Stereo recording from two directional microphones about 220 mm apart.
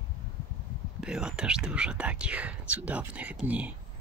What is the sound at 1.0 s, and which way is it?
Speech, 5° right (ahead or behind).